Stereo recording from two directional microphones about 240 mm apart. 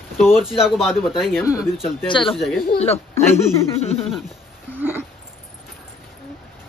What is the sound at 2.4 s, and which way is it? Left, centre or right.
Speech, centre.